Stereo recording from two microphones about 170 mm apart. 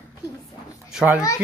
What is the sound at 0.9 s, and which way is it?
Speech, 5° right (ahead or behind).